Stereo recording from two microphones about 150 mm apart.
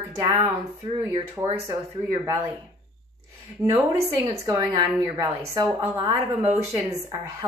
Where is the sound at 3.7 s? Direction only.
25° right (ahead or behind).